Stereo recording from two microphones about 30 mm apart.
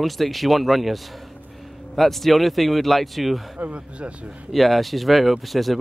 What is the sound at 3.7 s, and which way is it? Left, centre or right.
Speech, right.